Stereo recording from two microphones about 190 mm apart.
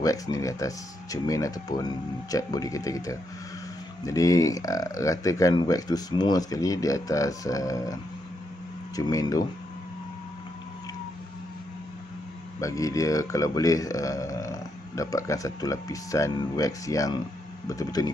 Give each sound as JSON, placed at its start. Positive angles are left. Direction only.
{"t": 0.0, "sound": "speech", "side_deg": 20}
{"t": 12.5, "sound": "speech", "side_deg": 15}